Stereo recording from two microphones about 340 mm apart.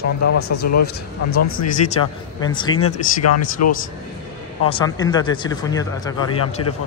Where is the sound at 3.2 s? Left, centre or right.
Left.